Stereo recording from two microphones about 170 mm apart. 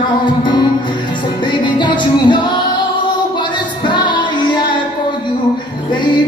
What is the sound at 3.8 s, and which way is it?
Music, 25° left (ahead or behind).